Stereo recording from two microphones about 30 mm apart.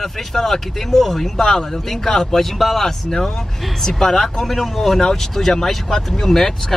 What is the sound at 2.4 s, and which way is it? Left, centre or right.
Speech, centre.